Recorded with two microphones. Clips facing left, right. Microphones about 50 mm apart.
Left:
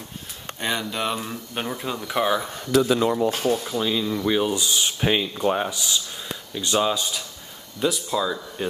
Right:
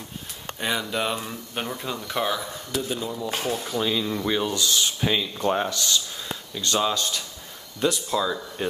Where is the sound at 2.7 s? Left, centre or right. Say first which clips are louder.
Left 10 dB; left.